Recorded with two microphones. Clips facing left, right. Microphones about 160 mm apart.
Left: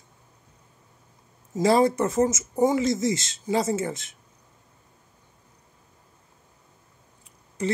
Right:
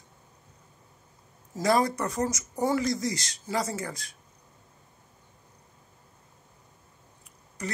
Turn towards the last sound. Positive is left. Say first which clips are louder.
# left 9 dB
turn(degrees=25)  # may be behind; listen again after turning